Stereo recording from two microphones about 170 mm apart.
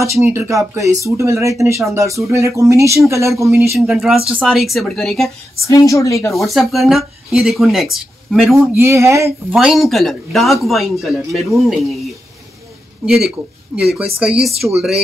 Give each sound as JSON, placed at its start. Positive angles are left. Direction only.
{"t": 0.0, "sound": "speech", "side_deg": -15}
{"t": 3.7, "sound": "speech", "side_deg": 0}
{"t": 5.6, "sound": "a woman's voice", "side_deg": 20}
{"t": 6.3, "sound": "speech", "side_deg": 0}
{"t": 8.5, "sound": "speech", "side_deg": -15}
{"t": 9.6, "sound": "speech", "side_deg": 0}
{"t": 13.0, "sound": "speech", "side_deg": 0}